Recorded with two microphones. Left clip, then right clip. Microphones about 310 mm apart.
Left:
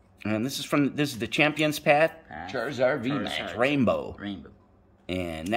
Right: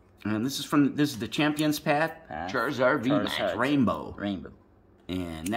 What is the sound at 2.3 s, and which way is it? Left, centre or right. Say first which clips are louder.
Speech: right 3 dB; right.